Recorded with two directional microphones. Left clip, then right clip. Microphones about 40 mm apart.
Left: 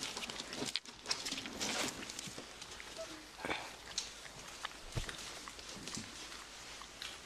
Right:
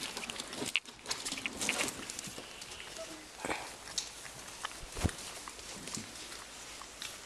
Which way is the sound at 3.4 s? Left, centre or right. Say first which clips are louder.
Right 2 dB; right.